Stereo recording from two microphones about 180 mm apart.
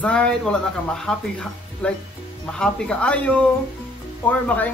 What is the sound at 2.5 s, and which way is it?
A man's voice, 5° left (ahead or behind).